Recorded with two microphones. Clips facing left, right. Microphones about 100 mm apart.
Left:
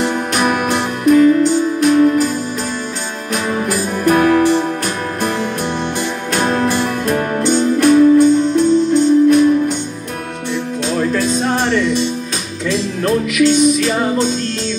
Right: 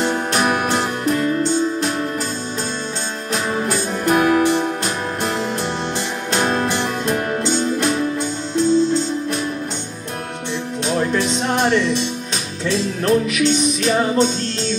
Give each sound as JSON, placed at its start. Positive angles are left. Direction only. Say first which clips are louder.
{"t": 0.0, "sound": "music", "louder": "left 2 dB", "side_deg": -30}
{"t": 3.6, "sound": "music", "louder": "left 4 dB", "side_deg": -25}
{"t": 6.3, "sound": "music", "louder": "left 3 dB", "side_deg": -25}
{"t": 10.9, "sound": "music", "louder": "left 2 dB", "side_deg": -20}